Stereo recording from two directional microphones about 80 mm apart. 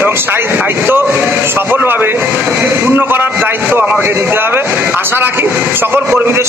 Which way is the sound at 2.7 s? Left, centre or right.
Right.